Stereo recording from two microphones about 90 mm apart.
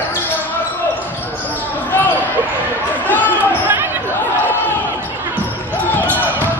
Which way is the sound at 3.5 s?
20° right (ahead or behind).